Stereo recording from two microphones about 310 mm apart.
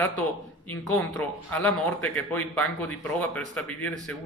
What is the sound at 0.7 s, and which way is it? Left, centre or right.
Speech, centre.